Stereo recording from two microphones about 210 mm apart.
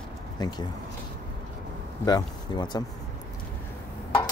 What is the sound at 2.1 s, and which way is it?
Speech, 20° left (ahead or behind).